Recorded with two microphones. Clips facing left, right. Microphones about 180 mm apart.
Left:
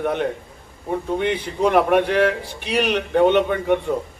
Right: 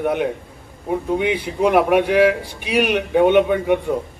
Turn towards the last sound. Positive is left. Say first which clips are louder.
# right 2 dB
turn(degrees=-10)  # may be behind; listen again after turning